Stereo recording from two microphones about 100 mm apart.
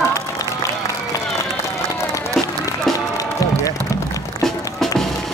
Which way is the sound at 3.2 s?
35° left (ahead or behind).